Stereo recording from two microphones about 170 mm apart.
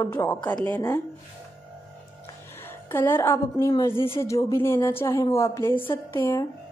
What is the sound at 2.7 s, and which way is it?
A woman's voice, 10° left (ahead or behind).